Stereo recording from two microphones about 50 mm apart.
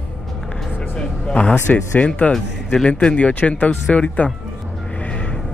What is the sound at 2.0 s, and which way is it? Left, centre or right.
Speech, left.